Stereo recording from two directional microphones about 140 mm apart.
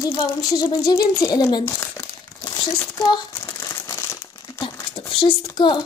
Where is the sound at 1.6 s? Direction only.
20° left (ahead or behind).